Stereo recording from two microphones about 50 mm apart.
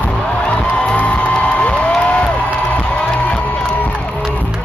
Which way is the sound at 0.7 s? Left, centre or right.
Left.